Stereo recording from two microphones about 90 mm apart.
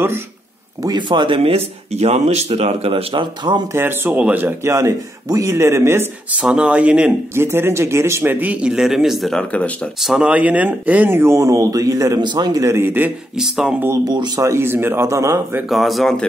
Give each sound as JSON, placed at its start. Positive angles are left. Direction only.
{"t": 0.8, "sound": "speech", "side_deg": -60}
{"t": 3.7, "sound": "speech", "side_deg": -25}
{"t": 4.7, "sound": "speech", "side_deg": -40}
{"t": 6.3, "sound": "speech", "side_deg": -10}
{"t": 7.3, "sound": "speech", "side_deg": -25}
{"t": 9.4, "sound": "speech", "side_deg": 15}
{"t": 9.9, "sound": "speech", "side_deg": -5}
{"t": 12.3, "sound": "speech", "side_deg": -50}
{"t": 12.6, "sound": "speech", "side_deg": -25}
{"t": 13.4, "sound": "speech", "side_deg": -5}
{"t": 13.7, "sound": "speech", "side_deg": -30}
{"t": 14.0, "sound": "speech", "side_deg": -50}
{"t": 14.5, "sound": "speech", "side_deg": -25}
{"t": 15.7, "sound": "speech", "side_deg": 0}